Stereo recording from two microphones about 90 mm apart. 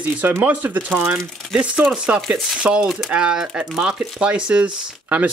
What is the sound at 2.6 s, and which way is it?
Speech, 10° right (ahead or behind).